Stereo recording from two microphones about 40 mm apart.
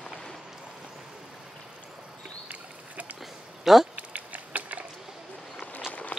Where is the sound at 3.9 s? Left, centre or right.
Right.